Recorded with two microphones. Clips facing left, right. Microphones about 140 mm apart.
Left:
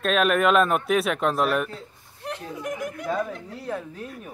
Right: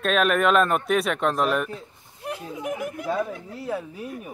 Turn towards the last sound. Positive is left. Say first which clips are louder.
# right 2 dB
turn(degrees=-10)  # may be behind; listen again after turning